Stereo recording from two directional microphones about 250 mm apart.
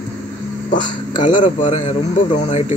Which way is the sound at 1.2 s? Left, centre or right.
Left.